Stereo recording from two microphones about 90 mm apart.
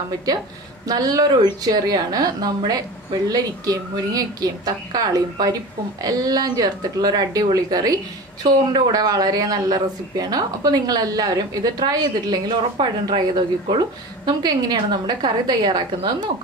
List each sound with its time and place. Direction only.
0.8 s a woman's voice: 45° right (ahead or behind)